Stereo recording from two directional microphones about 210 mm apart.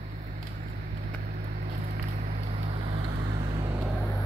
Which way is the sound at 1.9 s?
35° right (ahead or behind).